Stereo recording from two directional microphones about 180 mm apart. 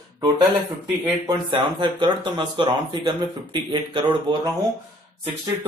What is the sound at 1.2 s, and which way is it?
Speech, 25° right (ahead or behind).